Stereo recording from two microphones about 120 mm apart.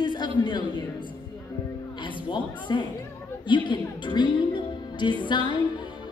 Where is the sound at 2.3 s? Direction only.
40° left (ahead or behind).